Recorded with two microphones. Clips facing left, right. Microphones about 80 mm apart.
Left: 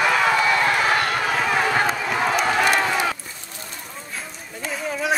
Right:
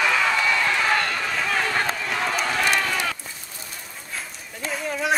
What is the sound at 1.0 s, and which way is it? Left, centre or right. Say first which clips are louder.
Run: left 4 dB; left.